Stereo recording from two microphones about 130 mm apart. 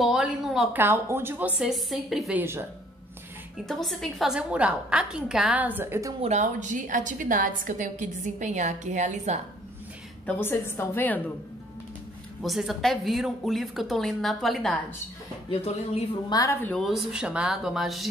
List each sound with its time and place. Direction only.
0.0 s speech: 5° right (ahead or behind)
0.7 s a woman's voice: 20° right (ahead or behind)
1.6 s speech: centre (ahead or behind)
2.3 s speech: 20° right (ahead or behind)
3.5 s a woman's voice: centre (ahead or behind); by 6.1 s 20° right (ahead or behind)
6.2 s a woman's voice: 65° right (ahead or behind)
10.2 s a woman's voice: 15° left (ahead or behind)
12.4 s speech: centre (ahead or behind)
15.5 s speech: 50° left (ahead or behind)
16.3 s a woman's voice: 30° left (ahead or behind)
16.8 s speech: centre (ahead or behind)